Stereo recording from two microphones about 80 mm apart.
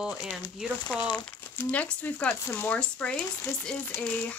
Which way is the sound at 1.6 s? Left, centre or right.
Centre.